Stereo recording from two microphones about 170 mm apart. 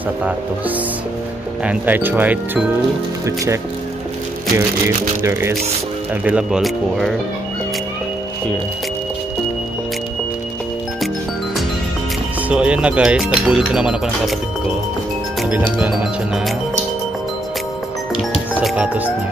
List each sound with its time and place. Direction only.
1.6 s speech: 10° right (ahead or behind)
4.6 s speech: 15° right (ahead or behind); by 7.2 s centre (ahead or behind)
12.4 s speech: 5° right (ahead or behind)
18.6 s music: 10° right (ahead or behind)